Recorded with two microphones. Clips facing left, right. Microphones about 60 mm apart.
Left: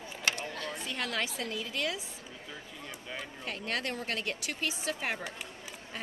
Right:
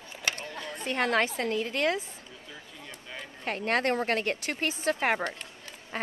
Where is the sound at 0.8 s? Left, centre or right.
Right.